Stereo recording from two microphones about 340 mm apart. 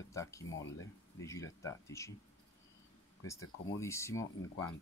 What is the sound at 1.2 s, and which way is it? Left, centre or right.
Speech, centre.